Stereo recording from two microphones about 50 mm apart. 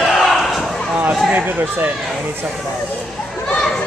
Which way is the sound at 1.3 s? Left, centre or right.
Right.